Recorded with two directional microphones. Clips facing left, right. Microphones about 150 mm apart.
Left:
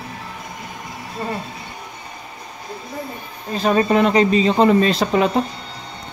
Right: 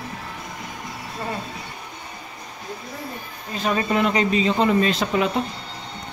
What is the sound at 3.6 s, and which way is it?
Speech, 40° left (ahead or behind).